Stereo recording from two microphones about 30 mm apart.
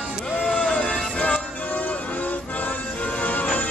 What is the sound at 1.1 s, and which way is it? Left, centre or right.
Music, left.